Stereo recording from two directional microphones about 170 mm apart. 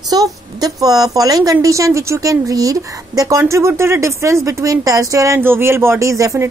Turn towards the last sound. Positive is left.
turn(degrees=-20)  # may be behind; listen again after turning